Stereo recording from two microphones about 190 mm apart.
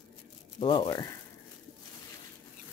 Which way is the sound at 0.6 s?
25° left (ahead or behind).